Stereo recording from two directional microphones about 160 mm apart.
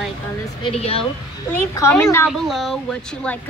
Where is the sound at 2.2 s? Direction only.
Centre (ahead or behind).